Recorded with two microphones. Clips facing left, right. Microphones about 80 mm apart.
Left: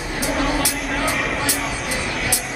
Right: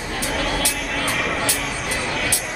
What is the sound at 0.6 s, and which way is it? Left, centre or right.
Music, centre.